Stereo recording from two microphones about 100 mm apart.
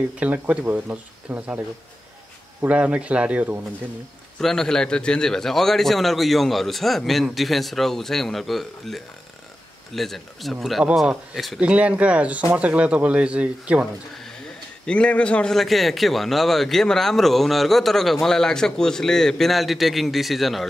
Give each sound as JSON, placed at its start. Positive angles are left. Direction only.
{"t": 0.2, "sound": "speech", "side_deg": -15}
{"t": 2.6, "sound": "speech", "side_deg": -15}
{"t": 4.4, "sound": "a man's voice", "side_deg": 5}
{"t": 11.6, "sound": "speech", "side_deg": -15}
{"t": 14.9, "sound": "a man's voice", "side_deg": 10}